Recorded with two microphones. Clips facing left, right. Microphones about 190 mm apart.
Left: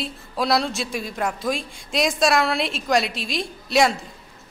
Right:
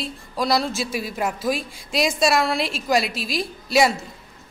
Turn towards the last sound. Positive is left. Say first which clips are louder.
# right 1 dB
turn(degrees=-5)  # may be behind; listen again after turning